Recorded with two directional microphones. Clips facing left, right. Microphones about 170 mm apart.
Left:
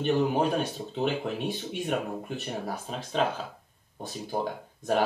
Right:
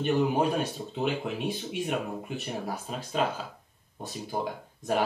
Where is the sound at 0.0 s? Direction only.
Centre (ahead or behind).